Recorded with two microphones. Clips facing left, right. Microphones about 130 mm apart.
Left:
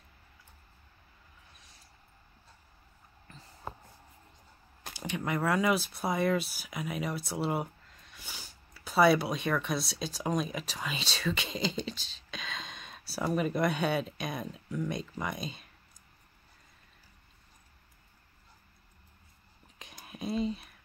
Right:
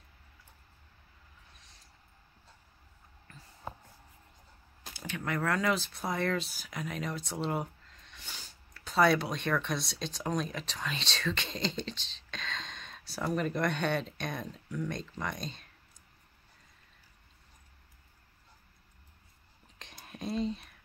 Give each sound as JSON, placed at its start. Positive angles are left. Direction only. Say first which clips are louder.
{"t": 3.3, "sound": "a sound", "louder": "left 2 dB", "side_deg": 25}
{"t": 4.9, "sound": "speech", "louder": "left 2 dB", "side_deg": 15}
{"t": 19.8, "sound": "whispering", "louder": "left 1 dB", "side_deg": 5}